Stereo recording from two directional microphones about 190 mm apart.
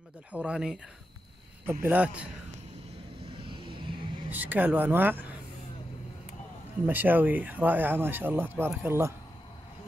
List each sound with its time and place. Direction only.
0.3 s speech: 5° right (ahead or behind)
3.3 s vehicle: 25° right (ahead or behind)
4.3 s speech: 10° right (ahead or behind)
6.9 s speech: 10° right (ahead or behind)